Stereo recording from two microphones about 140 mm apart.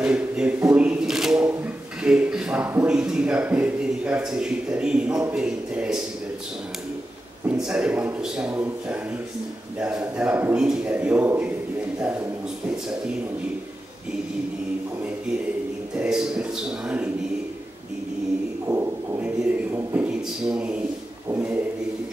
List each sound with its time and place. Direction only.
0.0 s shuffling cards: 10° right (ahead or behind)
1.5 s a sound: 10° right (ahead or behind)
5.3 s a man's voice: 5° right (ahead or behind)
7.4 s a man's voice: 5° right (ahead or behind)
16.0 s a man's voice: 5° right (ahead or behind)
18.7 s a sound: 20° right (ahead or behind)
19.4 s a man's voice: 10° right (ahead or behind)